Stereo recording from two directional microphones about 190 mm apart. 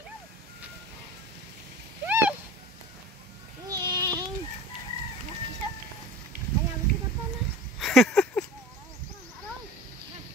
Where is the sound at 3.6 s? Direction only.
20° right (ahead or behind).